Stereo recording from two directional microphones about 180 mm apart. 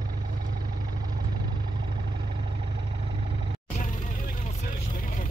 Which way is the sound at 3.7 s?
45° left (ahead or behind).